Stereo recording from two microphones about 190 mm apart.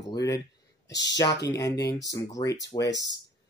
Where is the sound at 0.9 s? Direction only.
65° left (ahead or behind).